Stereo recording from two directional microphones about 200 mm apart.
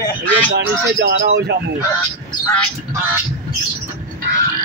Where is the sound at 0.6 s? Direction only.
55° right (ahead or behind).